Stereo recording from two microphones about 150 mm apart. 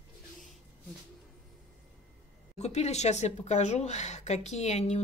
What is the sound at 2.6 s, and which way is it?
Speech, 45° left (ahead or behind).